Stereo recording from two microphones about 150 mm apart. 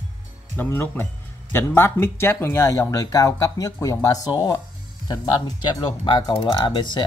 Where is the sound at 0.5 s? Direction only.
15° left (ahead or behind).